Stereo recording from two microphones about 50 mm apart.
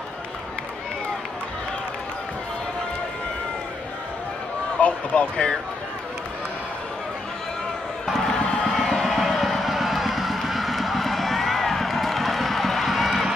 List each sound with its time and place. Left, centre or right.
4.7 s speech: left
8.2 s crowd: centre
8.7 s a sound: centre